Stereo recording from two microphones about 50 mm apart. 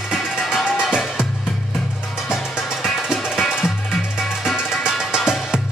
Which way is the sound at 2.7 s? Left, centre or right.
Centre.